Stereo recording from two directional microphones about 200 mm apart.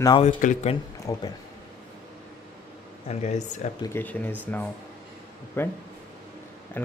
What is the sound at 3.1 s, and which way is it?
Speech, 35° left (ahead or behind).